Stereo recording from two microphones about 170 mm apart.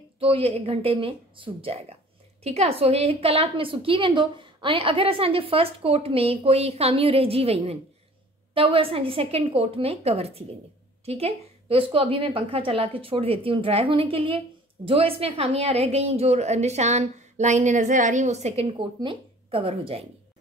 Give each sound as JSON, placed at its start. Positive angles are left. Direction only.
{"t": 0.2, "sound": "a woman's voice", "side_deg": -35}